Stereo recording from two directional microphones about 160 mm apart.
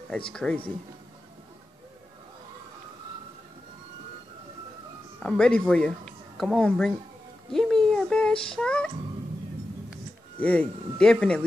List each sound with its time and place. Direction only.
0.3 s speech: 5° left (ahead or behind)
5.2 s speech: 5° left (ahead or behind)
7.5 s a sound: 5° left (ahead or behind)
10.4 s speech: 10° left (ahead or behind)